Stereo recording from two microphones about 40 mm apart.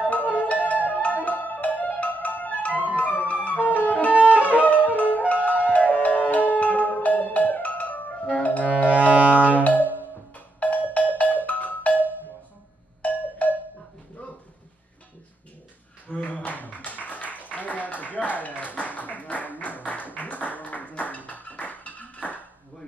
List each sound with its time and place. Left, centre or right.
0.0 s music: left
4.1 s music: right
5.3 s music: left
8.9 s music: right
9.6 s music: left
13.0 s music: left
16.1 s a sound: left